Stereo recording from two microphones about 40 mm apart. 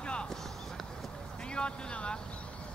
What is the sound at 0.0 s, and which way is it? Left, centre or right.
Run, left.